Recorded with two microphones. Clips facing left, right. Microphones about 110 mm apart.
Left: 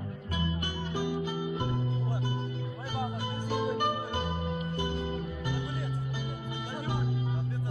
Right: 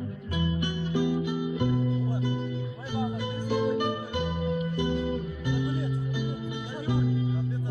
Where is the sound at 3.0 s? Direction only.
35° left (ahead or behind).